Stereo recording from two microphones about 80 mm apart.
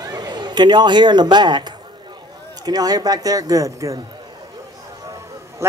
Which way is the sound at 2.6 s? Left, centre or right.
Right.